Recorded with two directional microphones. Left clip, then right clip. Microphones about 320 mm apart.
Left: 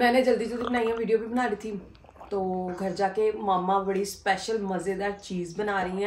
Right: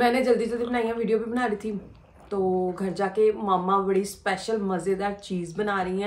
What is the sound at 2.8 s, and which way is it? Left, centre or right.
Speech, centre.